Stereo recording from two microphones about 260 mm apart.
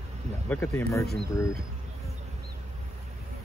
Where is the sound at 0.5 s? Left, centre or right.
Centre.